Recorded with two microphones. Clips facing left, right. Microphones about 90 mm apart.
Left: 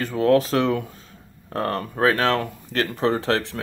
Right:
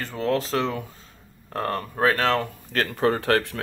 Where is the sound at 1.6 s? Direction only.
15° left (ahead or behind).